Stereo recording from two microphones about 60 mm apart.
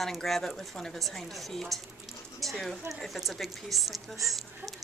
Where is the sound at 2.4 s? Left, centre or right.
Centre.